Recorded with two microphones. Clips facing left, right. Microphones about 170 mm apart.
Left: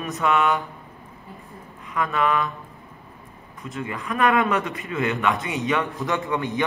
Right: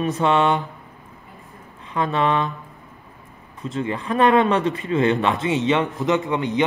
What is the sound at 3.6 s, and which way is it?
A man's voice, 30° right (ahead or behind).